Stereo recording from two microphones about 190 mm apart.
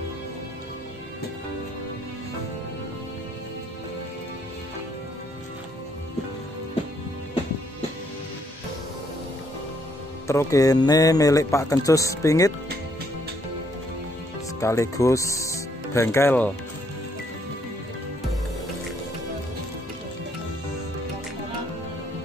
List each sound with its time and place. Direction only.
10.2 s speech: 15° left (ahead or behind)
14.6 s speech: 15° left (ahead or behind)